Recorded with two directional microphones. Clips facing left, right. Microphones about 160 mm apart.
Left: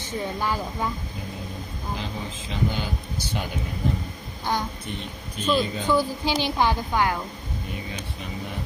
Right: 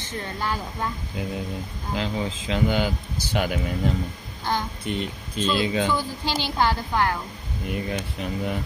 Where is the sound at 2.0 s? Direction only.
90° right.